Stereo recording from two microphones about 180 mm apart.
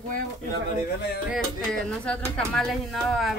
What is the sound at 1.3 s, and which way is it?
Speech, 5° left (ahead or behind).